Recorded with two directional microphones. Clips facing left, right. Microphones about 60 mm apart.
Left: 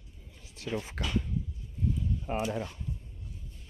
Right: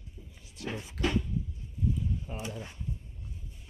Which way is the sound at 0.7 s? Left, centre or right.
Left.